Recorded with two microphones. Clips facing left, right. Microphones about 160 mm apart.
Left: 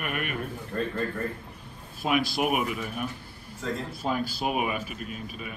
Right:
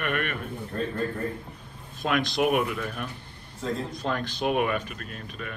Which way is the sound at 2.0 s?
5° left (ahead or behind).